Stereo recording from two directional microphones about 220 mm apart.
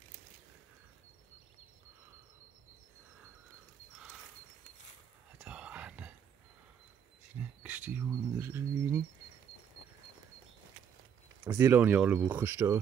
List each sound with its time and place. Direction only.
5.4 s whispering: 5° right (ahead or behind)
7.3 s speech: 5° right (ahead or behind)
11.4 s speech: 10° right (ahead or behind)